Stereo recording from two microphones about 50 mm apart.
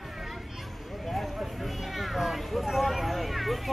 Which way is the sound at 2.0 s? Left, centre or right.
Centre.